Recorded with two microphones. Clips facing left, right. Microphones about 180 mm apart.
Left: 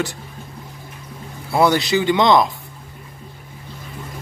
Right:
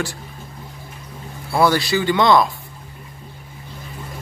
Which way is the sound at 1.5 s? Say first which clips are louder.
Left 1 dB; 20° left (ahead or behind).